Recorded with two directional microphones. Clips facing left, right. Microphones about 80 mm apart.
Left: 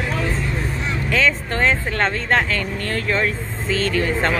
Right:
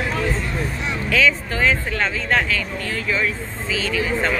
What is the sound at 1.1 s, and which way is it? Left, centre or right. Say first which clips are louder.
A man's voice: right 1 dB; left.